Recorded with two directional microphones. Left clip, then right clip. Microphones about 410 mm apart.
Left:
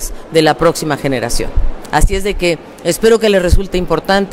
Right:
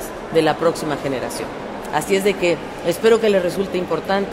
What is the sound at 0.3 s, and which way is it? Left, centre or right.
A man's voice, left.